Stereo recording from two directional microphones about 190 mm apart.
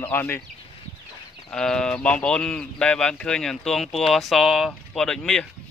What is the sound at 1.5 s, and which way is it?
Speech, 5° left (ahead or behind).